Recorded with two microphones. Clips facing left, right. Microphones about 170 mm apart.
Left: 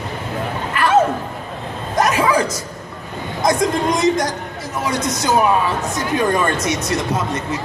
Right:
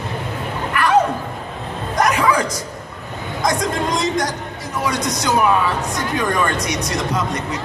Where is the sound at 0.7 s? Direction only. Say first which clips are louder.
Even; 25° left (ahead or behind).